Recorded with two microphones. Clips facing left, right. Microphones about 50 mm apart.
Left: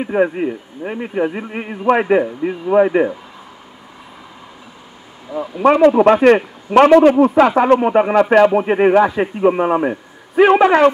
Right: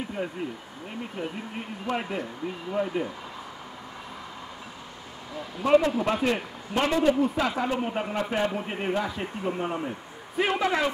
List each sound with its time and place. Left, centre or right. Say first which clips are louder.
0.0 s a man's voice: left 15 dB; left
5.3 s speech: left 14 dB; centre
5.6 s a man's voice: left 11 dB; left
8.5 s a man's voice: left 16 dB; left